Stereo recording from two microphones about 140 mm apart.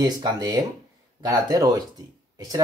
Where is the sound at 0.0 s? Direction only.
30° right (ahead or behind).